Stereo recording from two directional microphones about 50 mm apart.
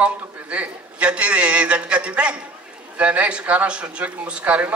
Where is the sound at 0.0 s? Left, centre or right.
Right.